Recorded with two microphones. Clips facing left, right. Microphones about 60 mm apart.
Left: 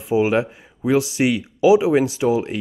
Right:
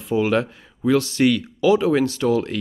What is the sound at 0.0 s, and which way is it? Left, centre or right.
Speech, centre.